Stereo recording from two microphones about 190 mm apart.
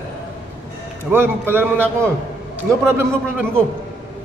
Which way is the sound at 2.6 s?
15° right (ahead or behind).